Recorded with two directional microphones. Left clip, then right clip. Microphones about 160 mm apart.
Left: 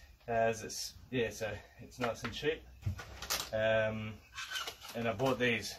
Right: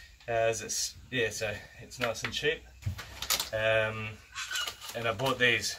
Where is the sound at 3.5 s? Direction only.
5° left (ahead or behind).